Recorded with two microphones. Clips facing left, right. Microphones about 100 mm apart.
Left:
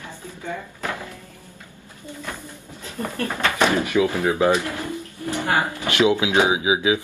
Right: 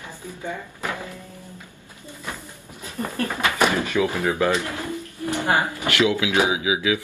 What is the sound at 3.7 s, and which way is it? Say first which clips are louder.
Speech: left 2 dB; 15° left (ahead or behind).